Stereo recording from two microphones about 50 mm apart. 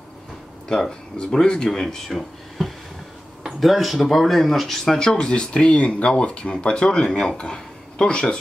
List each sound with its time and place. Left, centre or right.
0.7 s speech: centre